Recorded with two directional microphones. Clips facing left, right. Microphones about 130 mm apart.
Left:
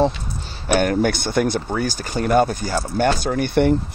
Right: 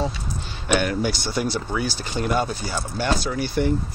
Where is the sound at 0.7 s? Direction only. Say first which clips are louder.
Left 5 dB; 50° left (ahead or behind).